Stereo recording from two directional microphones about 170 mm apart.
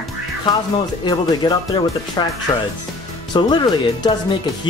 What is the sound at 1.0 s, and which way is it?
Speech, 25° left (ahead or behind).